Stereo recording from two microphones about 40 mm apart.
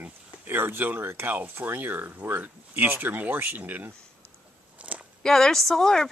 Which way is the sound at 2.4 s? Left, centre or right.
Right.